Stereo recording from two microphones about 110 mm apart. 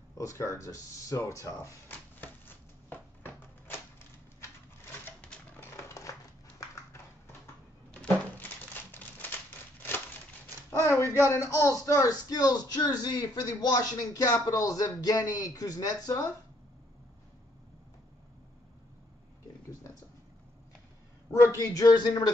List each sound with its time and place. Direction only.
0.2 s speech: 25° left (ahead or behind)
5.2 s typewriter: 10° left (ahead or behind)
5.9 s a sound: 30° left (ahead or behind)
8.4 s crumpling: 20° left (ahead or behind)
9.8 s a sound: 20° left (ahead or behind)
11.2 s speech: 25° left (ahead or behind)
21.3 s a man's voice: 30° left (ahead or behind)